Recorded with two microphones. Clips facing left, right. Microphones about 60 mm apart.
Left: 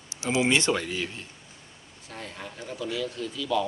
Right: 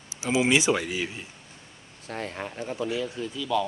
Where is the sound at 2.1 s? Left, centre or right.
Right.